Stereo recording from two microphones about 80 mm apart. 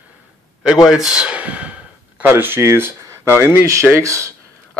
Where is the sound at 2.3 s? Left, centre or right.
Right.